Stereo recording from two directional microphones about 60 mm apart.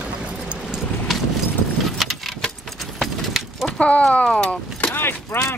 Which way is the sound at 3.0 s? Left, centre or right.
Centre.